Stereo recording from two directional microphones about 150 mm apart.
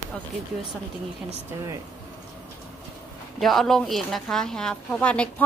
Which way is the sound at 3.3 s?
Centre (ahead or behind).